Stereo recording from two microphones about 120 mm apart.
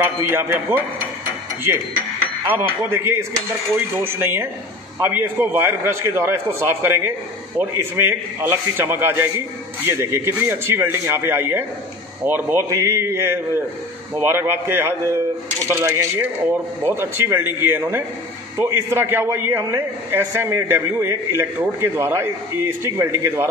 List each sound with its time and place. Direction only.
0.0 s a man's voice: 15° right (ahead or behind)
2.5 s a man's voice: 20° right (ahead or behind)